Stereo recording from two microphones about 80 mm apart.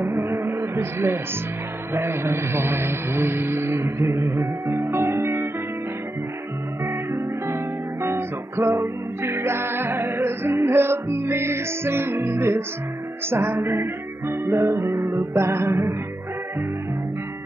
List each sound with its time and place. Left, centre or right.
0.0 s a sound: right
2.0 s speech: right
6.8 s music: right